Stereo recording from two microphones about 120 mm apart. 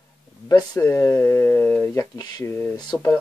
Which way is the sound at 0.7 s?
20° left (ahead or behind).